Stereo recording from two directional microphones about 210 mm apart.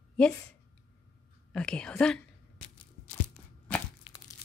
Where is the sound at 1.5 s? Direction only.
5° left (ahead or behind).